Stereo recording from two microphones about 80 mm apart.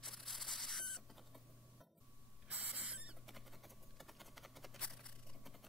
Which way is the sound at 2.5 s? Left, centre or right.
Centre.